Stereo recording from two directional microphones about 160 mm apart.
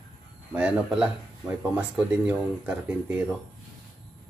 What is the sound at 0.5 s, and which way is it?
Speech, 10° right (ahead or behind).